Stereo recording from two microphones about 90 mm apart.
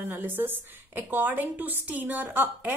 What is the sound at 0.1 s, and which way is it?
Speech, 25° right (ahead or behind).